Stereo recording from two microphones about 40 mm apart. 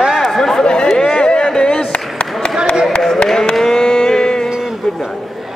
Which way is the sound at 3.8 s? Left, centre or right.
Centre.